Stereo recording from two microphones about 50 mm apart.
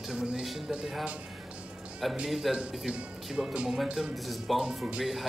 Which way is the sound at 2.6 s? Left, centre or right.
Right.